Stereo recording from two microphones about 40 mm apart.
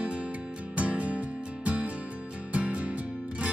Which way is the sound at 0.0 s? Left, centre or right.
Right.